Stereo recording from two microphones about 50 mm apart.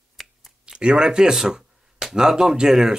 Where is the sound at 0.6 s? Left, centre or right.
Centre.